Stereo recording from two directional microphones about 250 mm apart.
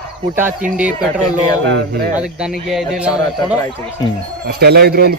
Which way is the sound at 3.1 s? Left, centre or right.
Centre.